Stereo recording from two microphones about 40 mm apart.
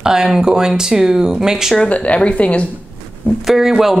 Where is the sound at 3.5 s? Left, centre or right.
Centre.